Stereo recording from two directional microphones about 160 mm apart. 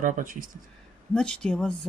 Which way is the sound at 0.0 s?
60° right (ahead or behind).